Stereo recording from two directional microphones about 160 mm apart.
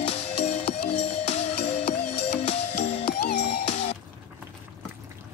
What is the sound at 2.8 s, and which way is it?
Music, 90° left.